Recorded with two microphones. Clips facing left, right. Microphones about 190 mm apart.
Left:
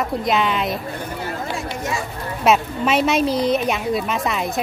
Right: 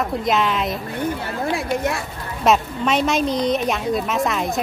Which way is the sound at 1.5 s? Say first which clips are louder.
Right 6 dB; 60° right (ahead or behind).